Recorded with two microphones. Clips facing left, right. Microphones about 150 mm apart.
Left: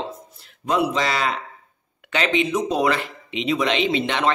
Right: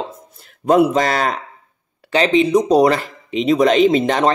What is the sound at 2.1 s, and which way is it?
Speech, 35° right (ahead or behind).